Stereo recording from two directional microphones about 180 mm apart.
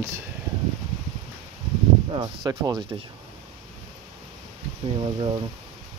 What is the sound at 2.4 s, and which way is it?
Speech, 25° right (ahead or behind).